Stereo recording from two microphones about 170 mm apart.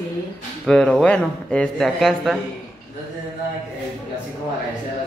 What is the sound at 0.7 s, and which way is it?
A man's voice, 5° left (ahead or behind).